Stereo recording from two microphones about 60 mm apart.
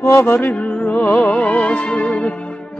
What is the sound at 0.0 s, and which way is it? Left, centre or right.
Music, left.